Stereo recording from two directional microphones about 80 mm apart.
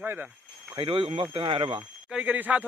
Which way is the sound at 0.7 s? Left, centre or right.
Right.